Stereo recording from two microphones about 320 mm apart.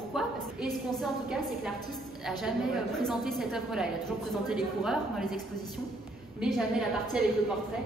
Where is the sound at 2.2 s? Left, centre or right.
Centre.